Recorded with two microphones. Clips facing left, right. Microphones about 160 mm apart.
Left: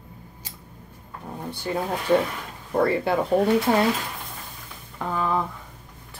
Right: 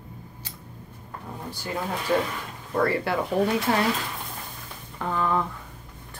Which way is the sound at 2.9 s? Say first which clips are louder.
Left 3 dB; 20° left (ahead or behind).